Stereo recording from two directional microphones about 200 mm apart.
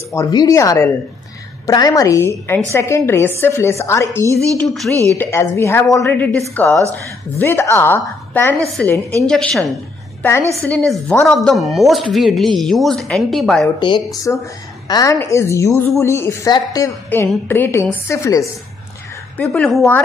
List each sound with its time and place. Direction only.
0.1 s a woman's voice: 20° left (ahead or behind)
4.6 s a woman's voice: centre (ahead or behind)
13.7 s a woman's voice: 25° left (ahead or behind); by 20.0 s 5° left (ahead or behind)